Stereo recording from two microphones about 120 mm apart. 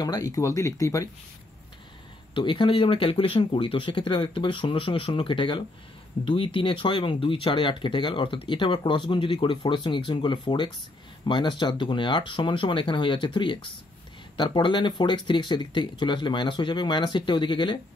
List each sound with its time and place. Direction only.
0.0 s speech: 30° left (ahead or behind)
2.3 s speech: 45° left (ahead or behind)